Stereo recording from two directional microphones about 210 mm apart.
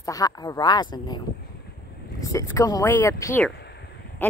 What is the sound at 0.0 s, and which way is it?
Speech, 15° left (ahead or behind).